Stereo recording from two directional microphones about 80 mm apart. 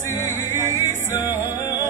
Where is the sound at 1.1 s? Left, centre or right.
Right.